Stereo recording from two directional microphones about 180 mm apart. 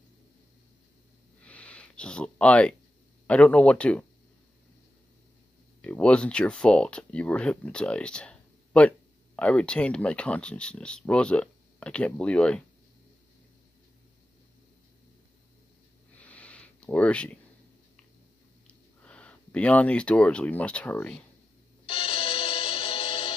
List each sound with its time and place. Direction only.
1.4 s a sound: 5° left (ahead or behind)
3.3 s speech: 5° left (ahead or behind)
5.8 s speech: 5° left (ahead or behind)
16.2 s a sound: 10° left (ahead or behind)
18.7 s speech: 5° left (ahead or behind)
21.8 s music: 30° left (ahead or behind)